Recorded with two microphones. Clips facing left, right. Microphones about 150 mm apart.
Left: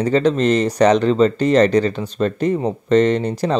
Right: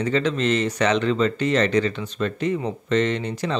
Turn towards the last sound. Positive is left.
turn(degrees=40)  # may be behind; listen again after turning